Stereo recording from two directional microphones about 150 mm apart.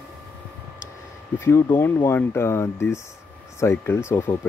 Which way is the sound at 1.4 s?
15° left (ahead or behind).